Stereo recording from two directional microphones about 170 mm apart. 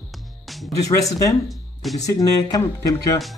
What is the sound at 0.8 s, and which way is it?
Speech, 20° left (ahead or behind).